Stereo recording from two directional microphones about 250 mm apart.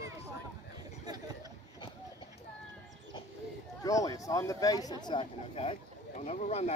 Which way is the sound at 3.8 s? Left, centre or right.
Centre.